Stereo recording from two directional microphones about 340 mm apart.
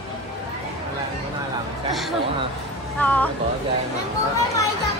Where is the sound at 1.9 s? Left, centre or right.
Centre.